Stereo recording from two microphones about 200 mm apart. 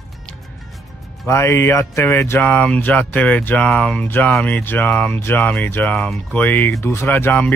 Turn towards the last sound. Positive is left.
turn(degrees=10)  # may be behind; listen again after turning